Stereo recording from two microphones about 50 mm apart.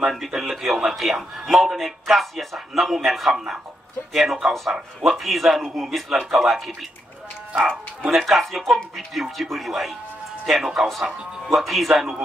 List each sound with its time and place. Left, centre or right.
0.0 s a man's voice: centre
7.5 s speech: right
8.1 s a man's voice: centre